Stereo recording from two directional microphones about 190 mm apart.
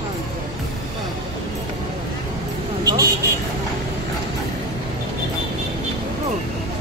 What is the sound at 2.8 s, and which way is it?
Vehicle, 20° right (ahead or behind).